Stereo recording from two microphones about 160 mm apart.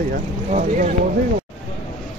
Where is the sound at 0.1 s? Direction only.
50° right (ahead or behind).